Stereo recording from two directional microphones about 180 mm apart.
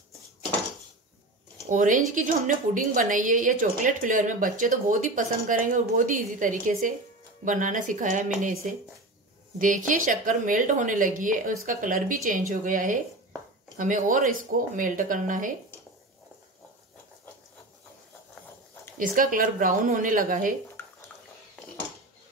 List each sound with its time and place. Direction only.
1.7 s a woman's voice: 45° right (ahead or behind)
9.6 s a woman's voice: 45° right (ahead or behind)
18.9 s a woman's voice: 50° right (ahead or behind)
20.8 s bathtub: 10° left (ahead or behind)